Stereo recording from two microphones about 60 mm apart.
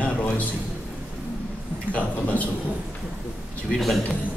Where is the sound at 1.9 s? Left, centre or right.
Left.